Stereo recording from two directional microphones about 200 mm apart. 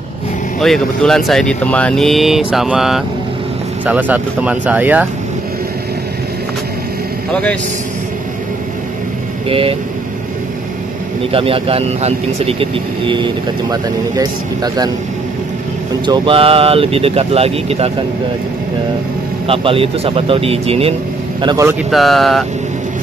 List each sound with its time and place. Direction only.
0.6 s speech: centre (ahead or behind)
9.5 s speech: 30° right (ahead or behind)
11.3 s speech: 30° right (ahead or behind)
16.1 s speech: 25° right (ahead or behind)
19.4 s speech: 25° right (ahead or behind)
21.9 s speech: centre (ahead or behind)